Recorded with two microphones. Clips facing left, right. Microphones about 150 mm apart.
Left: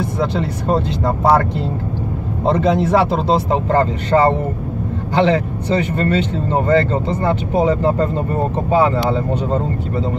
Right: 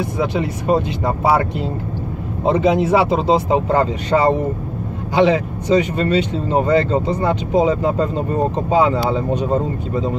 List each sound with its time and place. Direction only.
0.4 s speech: 10° right (ahead or behind)
2.4 s speech: 10° right (ahead or behind)